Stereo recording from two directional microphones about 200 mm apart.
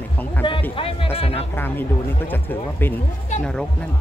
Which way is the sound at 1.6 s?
10° left (ahead or behind).